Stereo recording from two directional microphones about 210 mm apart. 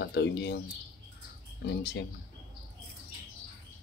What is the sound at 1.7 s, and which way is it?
Speech, 55° left (ahead or behind).